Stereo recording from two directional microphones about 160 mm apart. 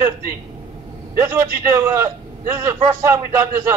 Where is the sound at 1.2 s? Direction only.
20° right (ahead or behind).